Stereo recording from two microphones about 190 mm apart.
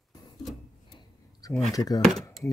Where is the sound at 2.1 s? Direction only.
Centre (ahead or behind).